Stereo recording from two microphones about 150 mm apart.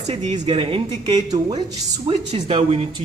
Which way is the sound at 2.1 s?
40° right (ahead or behind).